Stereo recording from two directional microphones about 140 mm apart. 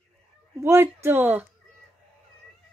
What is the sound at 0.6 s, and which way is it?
Speech, 15° right (ahead or behind).